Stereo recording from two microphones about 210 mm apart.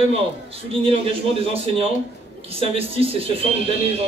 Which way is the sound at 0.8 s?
25° right (ahead or behind).